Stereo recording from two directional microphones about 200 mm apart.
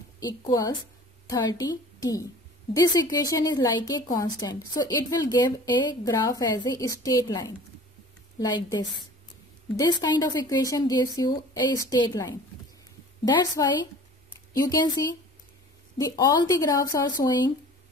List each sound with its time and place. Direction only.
0.5 s a woman's voice: 20° left (ahead or behind)